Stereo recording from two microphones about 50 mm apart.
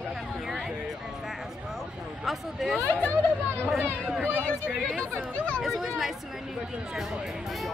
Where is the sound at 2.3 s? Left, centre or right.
Centre.